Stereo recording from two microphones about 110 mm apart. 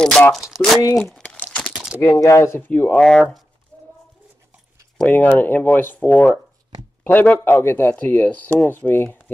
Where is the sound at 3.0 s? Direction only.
5° left (ahead or behind).